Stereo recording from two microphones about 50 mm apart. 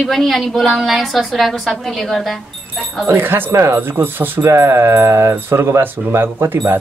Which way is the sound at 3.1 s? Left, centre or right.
Right.